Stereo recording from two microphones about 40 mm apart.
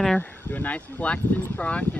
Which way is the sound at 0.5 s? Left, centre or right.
Left.